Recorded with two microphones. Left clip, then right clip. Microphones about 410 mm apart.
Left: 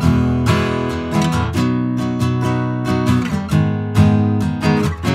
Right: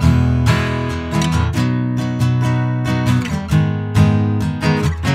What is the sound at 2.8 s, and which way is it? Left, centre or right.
Music, right.